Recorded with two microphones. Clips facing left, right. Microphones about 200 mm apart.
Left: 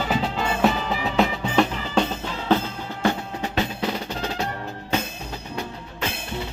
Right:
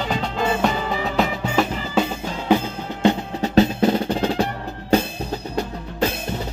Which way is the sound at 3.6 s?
45° right (ahead or behind).